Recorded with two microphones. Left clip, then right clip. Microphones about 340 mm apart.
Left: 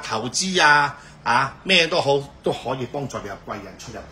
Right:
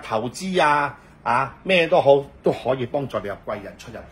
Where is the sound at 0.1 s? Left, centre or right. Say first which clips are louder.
Even; centre.